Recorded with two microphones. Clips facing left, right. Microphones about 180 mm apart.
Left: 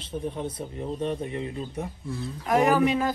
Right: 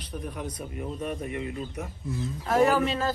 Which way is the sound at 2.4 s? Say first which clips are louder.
Left 2 dB; 15° left (ahead or behind).